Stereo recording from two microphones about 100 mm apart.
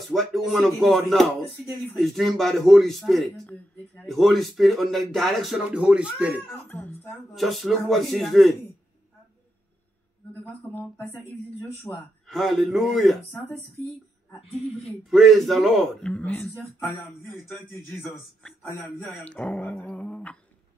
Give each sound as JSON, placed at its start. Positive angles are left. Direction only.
{"t": 0.1, "sound": "speech", "side_deg": 0}
{"t": 3.4, "sound": "speech", "side_deg": 15}
{"t": 4.1, "sound": "speech", "side_deg": 0}
{"t": 5.7, "sound": "speech", "side_deg": -10}
{"t": 6.5, "sound": "speech", "side_deg": 15}
{"t": 7.3, "sound": "speech", "side_deg": 0}
{"t": 10.7, "sound": "speech", "side_deg": 20}
{"t": 12.3, "sound": "speech", "side_deg": 0}
{"t": 15.0, "sound": "speech", "side_deg": 0}
{"t": 18.9, "sound": "speech", "side_deg": 10}